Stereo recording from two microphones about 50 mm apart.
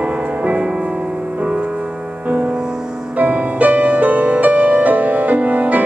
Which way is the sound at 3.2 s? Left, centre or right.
Right.